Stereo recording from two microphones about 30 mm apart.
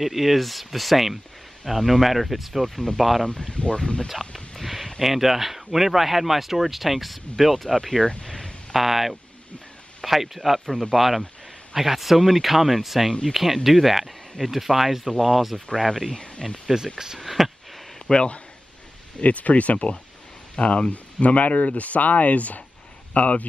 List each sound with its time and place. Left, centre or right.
0.0 s speech: centre
3.5 s speech: left
4.6 s speech: centre
8.2 s a sound: centre
8.7 s speech: centre
16.1 s speech: left
17.2 s a sound: centre
18.1 s speech: left
19.2 s speech: left